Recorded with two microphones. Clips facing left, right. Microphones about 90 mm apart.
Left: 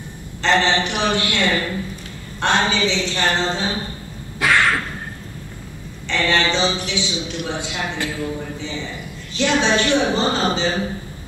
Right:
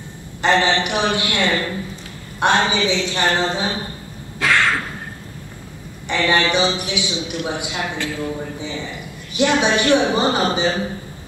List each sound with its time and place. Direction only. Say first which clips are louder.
0.4 s a man's voice: right 1 dB; 15° right (ahead or behind)
4.4 s cough: left 1 dB; 15° left (ahead or behind)
6.0 s a man's voice: right 1 dB; 15° right (ahead or behind)